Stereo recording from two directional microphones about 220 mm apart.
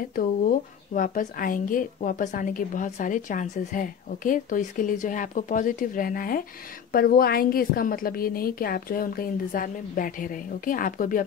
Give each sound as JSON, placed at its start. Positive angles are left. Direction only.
{"t": 0.1, "sound": "speech", "side_deg": 40}